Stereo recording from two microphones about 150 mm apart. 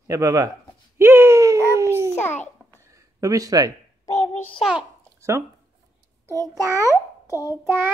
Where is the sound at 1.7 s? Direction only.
20° right (ahead or behind).